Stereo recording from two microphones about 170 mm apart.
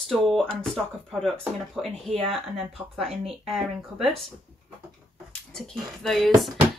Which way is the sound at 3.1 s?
35° right (ahead or behind).